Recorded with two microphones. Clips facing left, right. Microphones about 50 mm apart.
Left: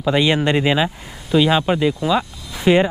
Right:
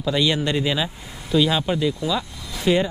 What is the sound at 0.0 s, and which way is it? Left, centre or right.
Speech, left.